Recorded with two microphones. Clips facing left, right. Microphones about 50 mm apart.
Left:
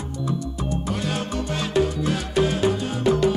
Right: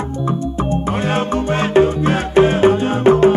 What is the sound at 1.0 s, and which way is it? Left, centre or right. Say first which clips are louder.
Music: right 9 dB; right.